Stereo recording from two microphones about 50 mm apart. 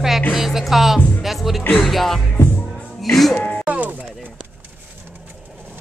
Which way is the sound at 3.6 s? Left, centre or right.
Right.